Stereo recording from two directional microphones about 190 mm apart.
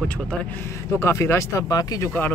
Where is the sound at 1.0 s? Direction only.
15° left (ahead or behind).